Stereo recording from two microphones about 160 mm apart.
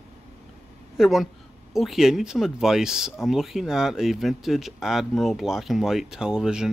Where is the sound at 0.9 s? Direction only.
Centre (ahead or behind).